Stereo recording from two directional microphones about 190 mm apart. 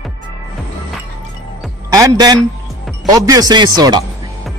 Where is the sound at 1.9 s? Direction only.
15° right (ahead or behind).